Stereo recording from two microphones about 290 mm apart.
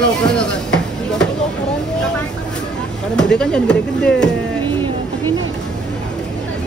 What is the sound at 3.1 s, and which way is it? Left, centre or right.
Speech, centre.